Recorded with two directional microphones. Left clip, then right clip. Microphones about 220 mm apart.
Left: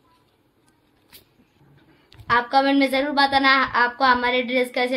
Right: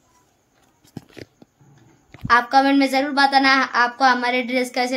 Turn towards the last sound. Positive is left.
turn(degrees=-10)  # may be behind; listen again after turning